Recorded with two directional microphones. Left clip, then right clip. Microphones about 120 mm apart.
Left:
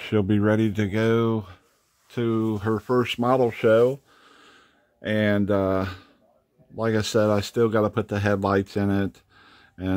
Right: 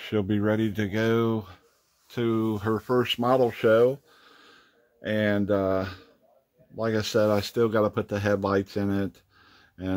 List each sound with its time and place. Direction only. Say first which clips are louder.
0.0 s speech: left 4 dB; 40° left (ahead or behind)